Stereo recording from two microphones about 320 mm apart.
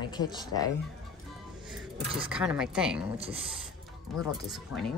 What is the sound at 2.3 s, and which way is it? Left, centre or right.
Speech, centre.